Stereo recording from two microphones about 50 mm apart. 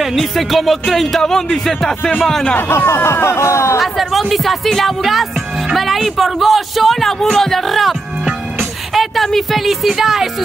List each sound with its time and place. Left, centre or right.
0.0 s speech: centre
3.1 s speech: left
3.8 s speech: centre
8.9 s speech: centre